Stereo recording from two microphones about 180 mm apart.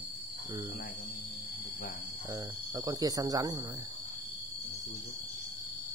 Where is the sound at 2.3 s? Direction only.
20° right (ahead or behind).